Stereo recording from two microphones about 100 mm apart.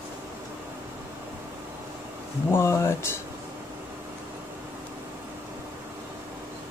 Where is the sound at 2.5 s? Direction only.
30° left (ahead or behind).